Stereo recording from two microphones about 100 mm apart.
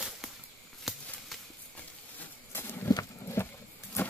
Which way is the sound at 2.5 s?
25° left (ahead or behind).